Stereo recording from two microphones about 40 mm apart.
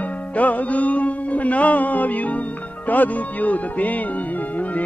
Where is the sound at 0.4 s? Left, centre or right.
Left.